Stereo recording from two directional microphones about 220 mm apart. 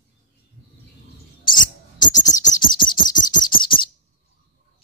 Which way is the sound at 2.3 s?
20° left (ahead or behind).